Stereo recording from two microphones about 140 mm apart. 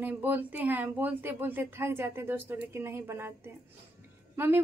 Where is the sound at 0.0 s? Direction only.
10° right (ahead or behind).